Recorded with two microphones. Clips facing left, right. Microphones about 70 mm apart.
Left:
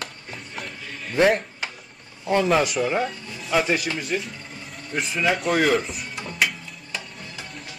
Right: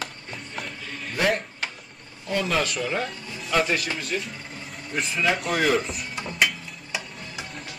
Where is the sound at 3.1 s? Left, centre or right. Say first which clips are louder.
Left 2 dB; centre.